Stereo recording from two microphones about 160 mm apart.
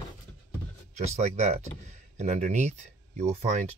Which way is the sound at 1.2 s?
45° right (ahead or behind).